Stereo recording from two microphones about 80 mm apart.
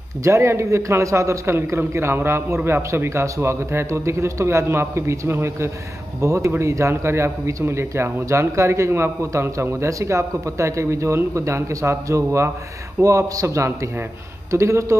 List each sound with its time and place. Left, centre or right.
0.2 s speech: right